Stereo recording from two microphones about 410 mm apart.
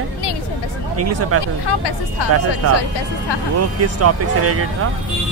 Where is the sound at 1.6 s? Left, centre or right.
Left.